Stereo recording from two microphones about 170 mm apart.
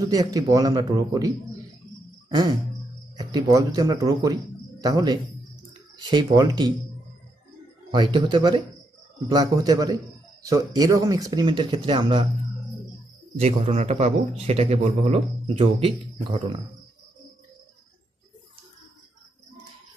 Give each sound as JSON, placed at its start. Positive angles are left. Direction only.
{"t": 0.0, "sound": "a man's voice", "side_deg": -20}
{"t": 7.9, "sound": "a man's voice", "side_deg": -25}
{"t": 13.4, "sound": "a man's voice", "side_deg": -40}